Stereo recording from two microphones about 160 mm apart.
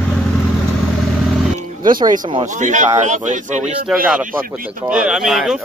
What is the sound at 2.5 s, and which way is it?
Speech, 50° right (ahead or behind).